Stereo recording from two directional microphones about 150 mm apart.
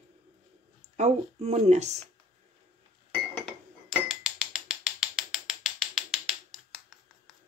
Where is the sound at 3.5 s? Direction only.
5° right (ahead or behind).